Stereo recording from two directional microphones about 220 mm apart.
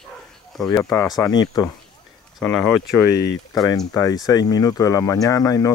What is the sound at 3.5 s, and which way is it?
Speech, 15° left (ahead or behind).